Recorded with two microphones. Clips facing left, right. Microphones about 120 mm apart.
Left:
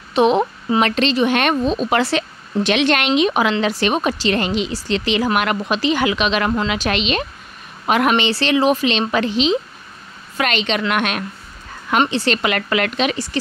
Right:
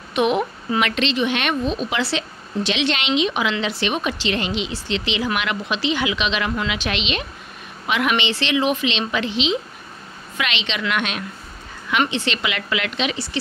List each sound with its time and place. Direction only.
0.1 s speech: 30° left (ahead or behind); by 11.2 s 50° left (ahead or behind)
12.1 s speech: 40° left (ahead or behind)